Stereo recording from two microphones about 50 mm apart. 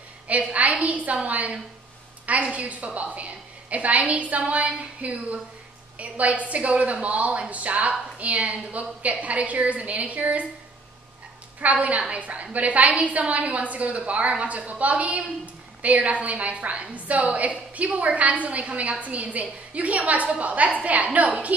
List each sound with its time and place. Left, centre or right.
0.3 s a sound: right
2.5 s a woman's voice: right
11.6 s a woman's voice: right